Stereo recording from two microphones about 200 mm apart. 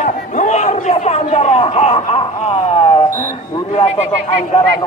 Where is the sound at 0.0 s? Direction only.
35° left (ahead or behind).